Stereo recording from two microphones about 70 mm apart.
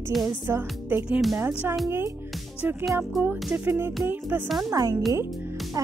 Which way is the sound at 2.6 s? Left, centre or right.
Right.